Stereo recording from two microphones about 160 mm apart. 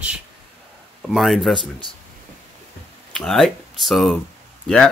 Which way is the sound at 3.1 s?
Centre (ahead or behind).